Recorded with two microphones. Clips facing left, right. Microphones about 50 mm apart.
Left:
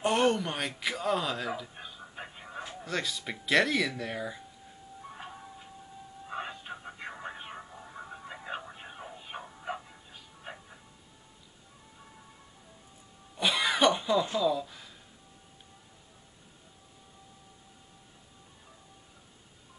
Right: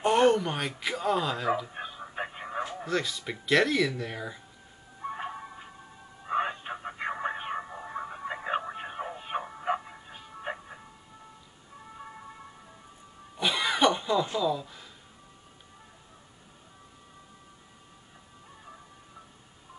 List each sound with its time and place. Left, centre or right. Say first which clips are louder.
0.0 s speech: right 4 dB; centre
1.7 s a sound: right 7 dB; right
2.9 s speech: right 1 dB; centre
5.0 s a sound: right 10 dB; right
6.2 s radio: right 9 dB; right
13.4 s music: right 1 dB; centre